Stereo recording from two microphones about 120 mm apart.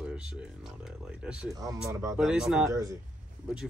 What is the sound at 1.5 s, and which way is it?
Speech, 30° right (ahead or behind).